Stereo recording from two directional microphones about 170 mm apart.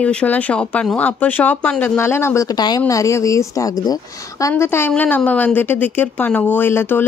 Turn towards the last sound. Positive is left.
turn(degrees=10)  # may be behind; listen again after turning